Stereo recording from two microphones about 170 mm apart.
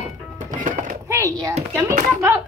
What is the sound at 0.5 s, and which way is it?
Music, 50° right (ahead or behind).